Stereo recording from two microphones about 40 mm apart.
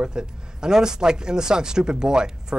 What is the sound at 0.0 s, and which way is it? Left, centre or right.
Speech, centre.